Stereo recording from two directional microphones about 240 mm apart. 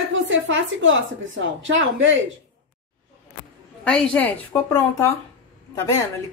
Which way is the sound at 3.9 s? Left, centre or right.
Centre.